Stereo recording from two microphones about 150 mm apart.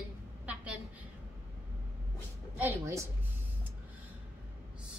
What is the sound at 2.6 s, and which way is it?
Speech, 15° right (ahead or behind).